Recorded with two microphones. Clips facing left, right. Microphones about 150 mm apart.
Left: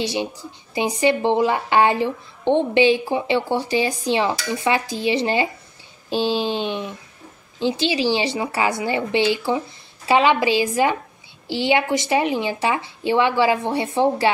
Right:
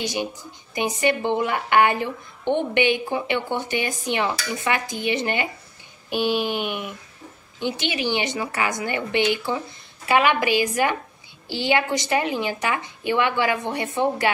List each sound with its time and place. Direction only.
0.0 s a woman's voice: 30° left (ahead or behind)